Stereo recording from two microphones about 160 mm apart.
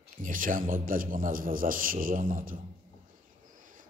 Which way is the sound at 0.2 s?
55° right (ahead or behind).